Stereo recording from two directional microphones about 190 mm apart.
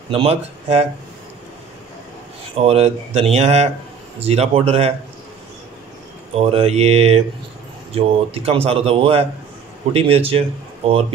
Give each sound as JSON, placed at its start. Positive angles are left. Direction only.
{"t": 0.1, "sound": "speech", "side_deg": -30}
{"t": 2.5, "sound": "speech", "side_deg": -30}
{"t": 6.3, "sound": "speech", "side_deg": -30}